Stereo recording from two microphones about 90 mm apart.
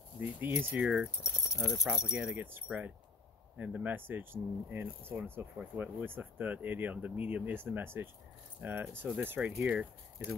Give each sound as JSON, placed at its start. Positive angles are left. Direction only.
{"t": 0.2, "sound": "speech", "side_deg": -20}
{"t": 1.2, "sound": "speech", "side_deg": 35}
{"t": 1.9, "sound": "speech", "side_deg": -10}
{"t": 2.7, "sound": "speech", "side_deg": 0}
{"t": 3.5, "sound": "speech", "side_deg": -20}